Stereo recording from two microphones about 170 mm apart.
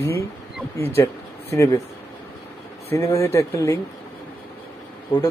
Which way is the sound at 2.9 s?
20° left (ahead or behind).